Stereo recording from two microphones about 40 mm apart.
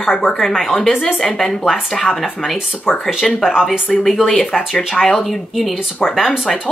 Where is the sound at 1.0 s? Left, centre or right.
Centre.